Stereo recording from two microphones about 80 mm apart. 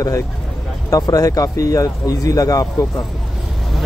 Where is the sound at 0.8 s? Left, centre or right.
Left.